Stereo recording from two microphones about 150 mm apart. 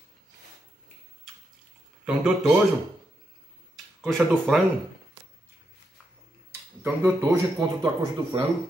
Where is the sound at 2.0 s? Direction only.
5° right (ahead or behind).